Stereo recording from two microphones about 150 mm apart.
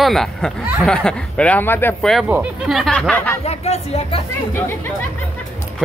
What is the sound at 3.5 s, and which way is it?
Speech, 45° left (ahead or behind).